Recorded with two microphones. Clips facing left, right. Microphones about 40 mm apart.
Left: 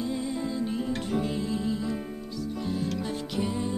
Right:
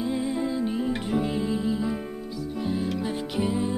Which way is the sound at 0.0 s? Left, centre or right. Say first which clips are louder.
Right 4 dB; centre.